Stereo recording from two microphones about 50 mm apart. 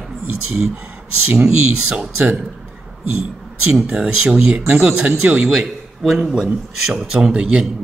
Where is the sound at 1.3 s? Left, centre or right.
Right.